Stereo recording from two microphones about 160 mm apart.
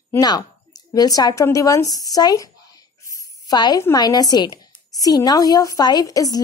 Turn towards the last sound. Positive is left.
turn(degrees=20)  # may be behind; listen again after turning